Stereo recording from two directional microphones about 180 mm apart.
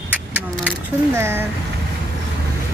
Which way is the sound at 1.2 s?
15° right (ahead or behind).